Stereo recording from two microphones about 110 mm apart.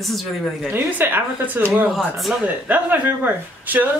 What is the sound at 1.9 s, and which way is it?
Speech, centre (ahead or behind).